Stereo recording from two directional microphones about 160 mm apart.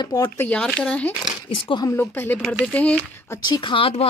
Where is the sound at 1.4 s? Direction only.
30° left (ahead or behind).